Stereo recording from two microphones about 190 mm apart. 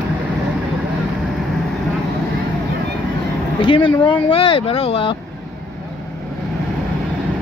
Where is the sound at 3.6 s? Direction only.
25° left (ahead or behind).